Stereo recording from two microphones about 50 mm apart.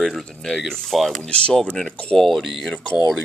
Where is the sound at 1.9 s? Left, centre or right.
Left.